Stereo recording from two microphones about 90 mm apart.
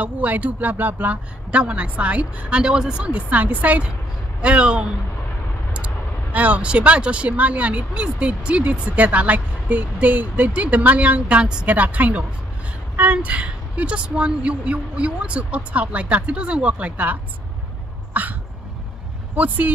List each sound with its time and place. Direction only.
0.0 s speech: 15° right (ahead or behind)
6.3 s speech: 15° right (ahead or behind)
18.1 s hiccup: 20° right (ahead or behind)
19.3 s speech: 15° right (ahead or behind)